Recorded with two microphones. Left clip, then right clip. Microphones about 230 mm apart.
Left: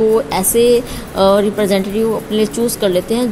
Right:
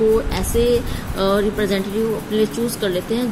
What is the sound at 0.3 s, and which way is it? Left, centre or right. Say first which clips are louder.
A woman's voice: left 6 dB; left.